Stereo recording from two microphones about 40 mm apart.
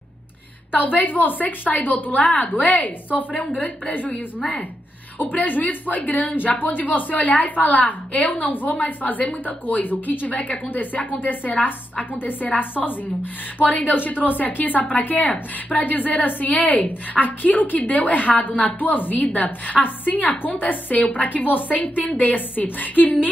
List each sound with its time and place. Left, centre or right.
0.7 s a woman's voice: left
5.2 s a woman's voice: left
13.9 s a woman's voice: left